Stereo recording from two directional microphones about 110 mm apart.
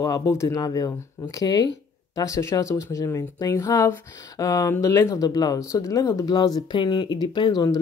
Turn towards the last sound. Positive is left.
turn(degrees=40)  # may be behind; listen again after turning